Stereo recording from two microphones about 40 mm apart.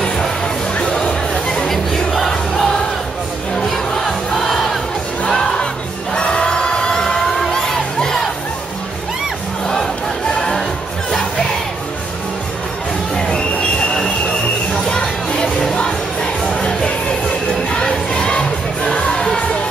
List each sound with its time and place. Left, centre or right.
1.7 s music: centre
4.4 s crowd: centre
5.3 s music: centre
7.5 s crowd: centre
13.1 s a sound: left
14.7 s music: centre